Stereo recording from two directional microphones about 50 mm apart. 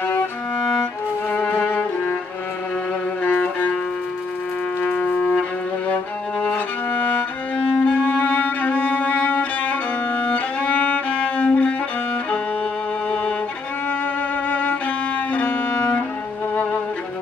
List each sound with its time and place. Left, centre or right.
1.3 s music: left
3.3 s music: left
4.8 s music: left
6.9 s music: left
14.5 s violin: left